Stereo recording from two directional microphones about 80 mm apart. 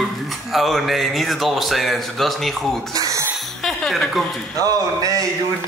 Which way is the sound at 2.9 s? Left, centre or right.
Right.